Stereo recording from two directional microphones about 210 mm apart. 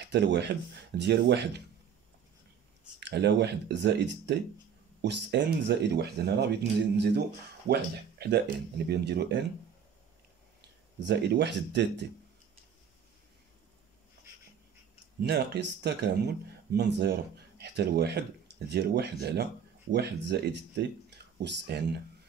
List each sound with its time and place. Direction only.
0.1 s speech: 55° right (ahead or behind)
3.0 s speech: 55° right (ahead or behind)
11.0 s speech: 55° right (ahead or behind)
15.2 s speech: 50° right (ahead or behind)